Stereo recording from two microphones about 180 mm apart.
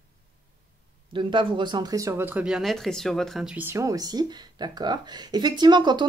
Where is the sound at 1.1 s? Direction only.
25° right (ahead or behind).